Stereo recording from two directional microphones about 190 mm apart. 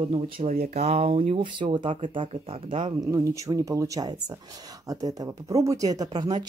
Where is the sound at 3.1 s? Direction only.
15° right (ahead or behind).